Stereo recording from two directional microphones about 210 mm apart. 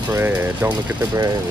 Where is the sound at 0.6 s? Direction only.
20° right (ahead or behind).